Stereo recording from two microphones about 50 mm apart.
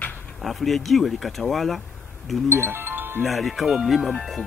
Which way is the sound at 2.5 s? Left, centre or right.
Right.